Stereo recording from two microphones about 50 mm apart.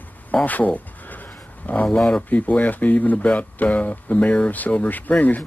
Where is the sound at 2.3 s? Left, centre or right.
Left.